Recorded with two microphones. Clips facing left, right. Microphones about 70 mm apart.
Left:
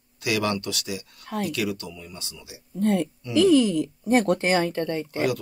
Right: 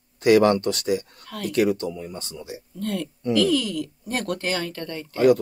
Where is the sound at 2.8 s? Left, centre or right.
Left.